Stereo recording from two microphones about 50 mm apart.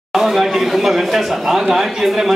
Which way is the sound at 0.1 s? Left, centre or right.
Centre.